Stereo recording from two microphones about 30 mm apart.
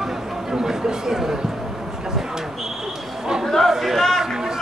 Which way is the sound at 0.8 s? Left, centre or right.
Centre.